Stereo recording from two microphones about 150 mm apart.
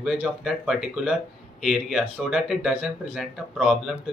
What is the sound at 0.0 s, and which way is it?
Speech, centre (ahead or behind).